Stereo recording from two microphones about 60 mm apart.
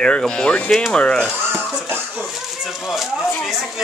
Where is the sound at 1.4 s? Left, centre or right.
Centre.